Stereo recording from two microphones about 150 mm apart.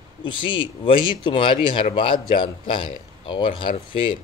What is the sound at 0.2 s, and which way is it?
Speech, 35° left (ahead or behind).